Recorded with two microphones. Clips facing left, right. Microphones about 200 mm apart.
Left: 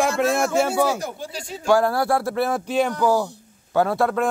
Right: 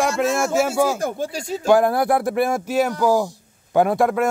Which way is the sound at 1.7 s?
20° right (ahead or behind).